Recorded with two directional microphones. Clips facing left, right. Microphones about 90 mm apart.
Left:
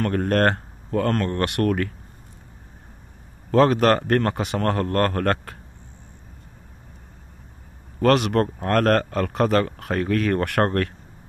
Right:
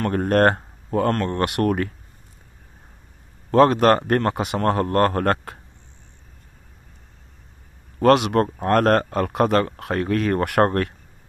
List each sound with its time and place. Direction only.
0.1 s speech: 20° right (ahead or behind)
3.5 s speech: 5° right (ahead or behind)
8.0 s speech: 5° right (ahead or behind)